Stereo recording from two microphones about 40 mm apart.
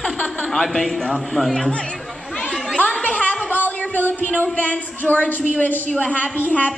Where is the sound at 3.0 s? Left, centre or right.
Left.